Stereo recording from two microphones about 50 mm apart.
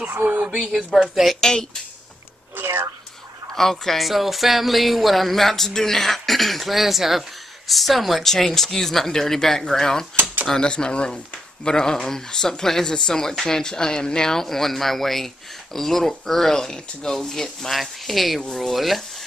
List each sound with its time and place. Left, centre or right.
0.1 s speech: right
0.6 s speech: centre
1.4 s speech: centre
2.5 s a sound: right
3.5 s speech: centre